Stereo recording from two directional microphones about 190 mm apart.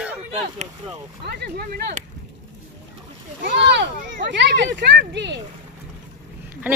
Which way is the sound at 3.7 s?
65° right (ahead or behind).